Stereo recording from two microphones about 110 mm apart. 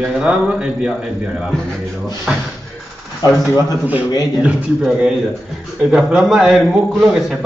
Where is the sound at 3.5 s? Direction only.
25° left (ahead or behind).